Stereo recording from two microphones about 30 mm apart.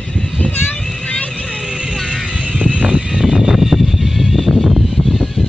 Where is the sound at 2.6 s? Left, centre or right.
Right.